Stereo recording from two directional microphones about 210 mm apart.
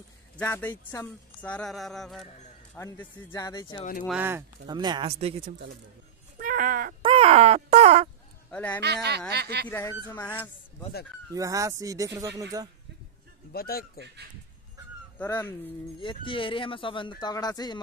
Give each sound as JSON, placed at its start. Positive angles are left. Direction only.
{"t": 0.4, "sound": "speech", "side_deg": 10}
{"t": 4.2, "sound": "speech", "side_deg": -10}
{"t": 6.3, "sound": "cat", "side_deg": -40}
{"t": 7.0, "sound": "a sound", "side_deg": -25}
{"t": 8.5, "sound": "speech", "side_deg": 10}
{"t": 8.8, "sound": "speech", "side_deg": -50}
{"t": 9.7, "sound": "speech", "side_deg": 10}
{"t": 11.3, "sound": "speech", "side_deg": -15}
{"t": 13.5, "sound": "speech", "side_deg": 45}
{"t": 15.1, "sound": "speech", "side_deg": 10}
{"t": 16.0, "sound": "speech", "side_deg": 25}